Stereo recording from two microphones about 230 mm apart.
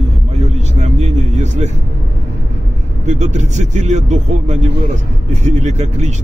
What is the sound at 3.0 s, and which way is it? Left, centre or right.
A man's voice, right.